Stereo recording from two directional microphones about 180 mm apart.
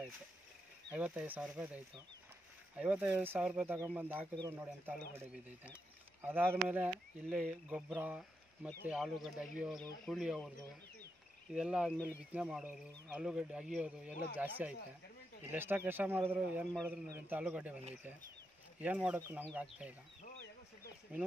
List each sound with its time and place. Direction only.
0.9 s speech: 10° right (ahead or behind)
2.8 s speech: 5° right (ahead or behind)
11.5 s speech: 5° right (ahead or behind)